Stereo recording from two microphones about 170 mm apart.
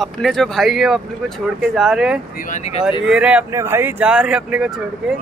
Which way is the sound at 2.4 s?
45° left (ahead or behind).